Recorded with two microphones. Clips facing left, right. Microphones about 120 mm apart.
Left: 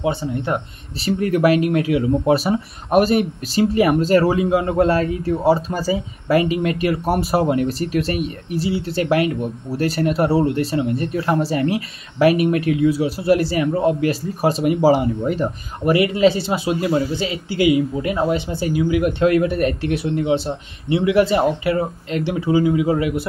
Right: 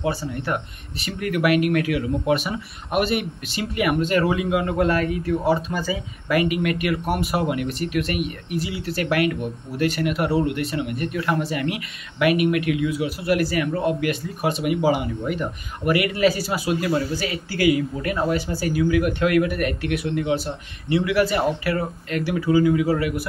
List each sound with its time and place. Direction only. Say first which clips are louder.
0.0 s speech: left 4 dB; 20° left (ahead or behind)